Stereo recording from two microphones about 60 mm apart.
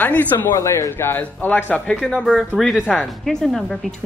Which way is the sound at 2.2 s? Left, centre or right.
Centre.